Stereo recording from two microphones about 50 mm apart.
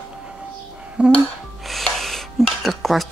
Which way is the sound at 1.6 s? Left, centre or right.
Centre.